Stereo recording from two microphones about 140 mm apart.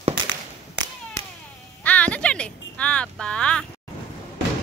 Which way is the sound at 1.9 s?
10° left (ahead or behind).